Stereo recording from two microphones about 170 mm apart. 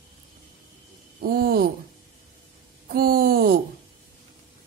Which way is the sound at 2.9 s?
60° right (ahead or behind).